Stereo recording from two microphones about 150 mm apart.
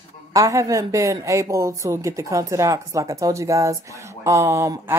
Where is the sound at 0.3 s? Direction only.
20° right (ahead or behind).